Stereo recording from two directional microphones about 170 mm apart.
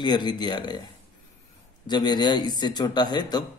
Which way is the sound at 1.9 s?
25° left (ahead or behind).